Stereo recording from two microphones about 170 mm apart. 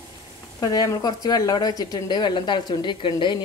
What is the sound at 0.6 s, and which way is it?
A woman's voice, 20° left (ahead or behind).